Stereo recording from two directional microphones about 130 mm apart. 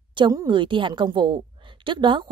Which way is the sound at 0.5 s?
40° right (ahead or behind).